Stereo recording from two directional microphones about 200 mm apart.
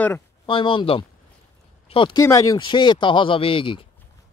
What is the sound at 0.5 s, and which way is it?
Speech, 25° left (ahead or behind).